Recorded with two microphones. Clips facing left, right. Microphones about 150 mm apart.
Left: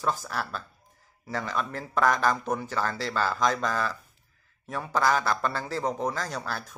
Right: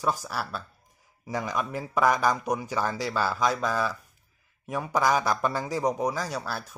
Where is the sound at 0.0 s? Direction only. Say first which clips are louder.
Right 1 dB; 10° right (ahead or behind).